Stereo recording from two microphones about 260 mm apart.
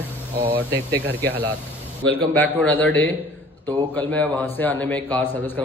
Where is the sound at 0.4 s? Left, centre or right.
Right.